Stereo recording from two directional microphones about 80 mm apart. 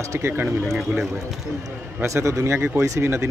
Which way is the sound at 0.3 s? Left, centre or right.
Right.